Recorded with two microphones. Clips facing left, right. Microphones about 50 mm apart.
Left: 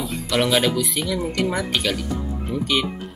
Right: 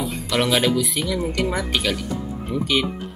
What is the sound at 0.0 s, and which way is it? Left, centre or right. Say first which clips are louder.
Speech: even; centre.